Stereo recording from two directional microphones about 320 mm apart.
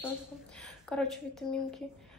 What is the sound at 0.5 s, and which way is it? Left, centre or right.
A woman's voice, centre.